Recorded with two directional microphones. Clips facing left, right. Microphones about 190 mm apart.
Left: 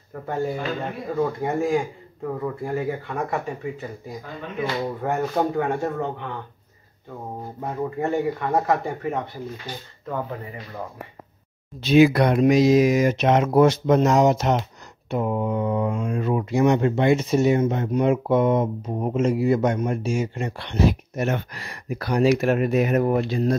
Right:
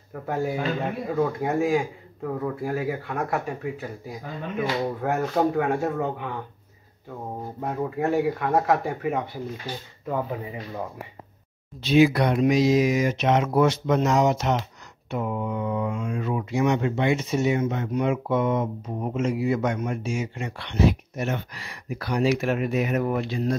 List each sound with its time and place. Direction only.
0.1 s speech: 5° right (ahead or behind)
7.6 s speech: centre (ahead or behind)
11.8 s speech: 50° left (ahead or behind)
21.3 s speech: 50° left (ahead or behind)